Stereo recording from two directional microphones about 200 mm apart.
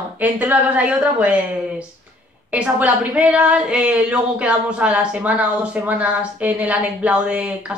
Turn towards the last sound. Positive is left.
turn(degrees=-5)  # may be behind; listen again after turning